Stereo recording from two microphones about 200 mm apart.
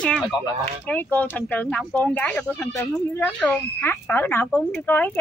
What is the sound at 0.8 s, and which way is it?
A woman's voice, 10° left (ahead or behind).